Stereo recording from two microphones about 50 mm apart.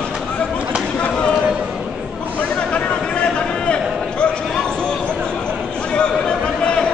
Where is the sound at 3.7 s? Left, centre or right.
Left.